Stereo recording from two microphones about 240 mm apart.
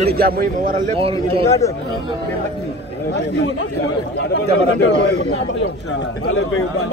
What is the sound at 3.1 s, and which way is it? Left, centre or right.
A man's voice, left.